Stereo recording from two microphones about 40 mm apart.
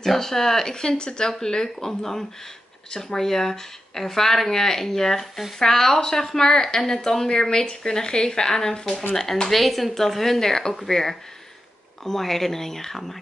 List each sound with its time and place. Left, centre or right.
0.0 s a woman's voice: centre